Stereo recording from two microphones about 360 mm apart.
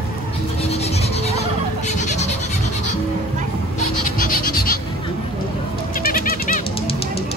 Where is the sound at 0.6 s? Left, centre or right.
Centre.